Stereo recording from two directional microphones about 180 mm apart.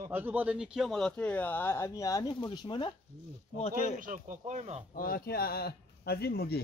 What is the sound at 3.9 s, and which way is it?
Speech, 45° right (ahead or behind).